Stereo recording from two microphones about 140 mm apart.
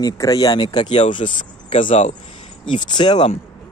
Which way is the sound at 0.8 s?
55° left (ahead or behind).